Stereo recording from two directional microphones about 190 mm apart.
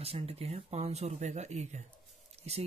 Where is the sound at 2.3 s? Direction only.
35° right (ahead or behind).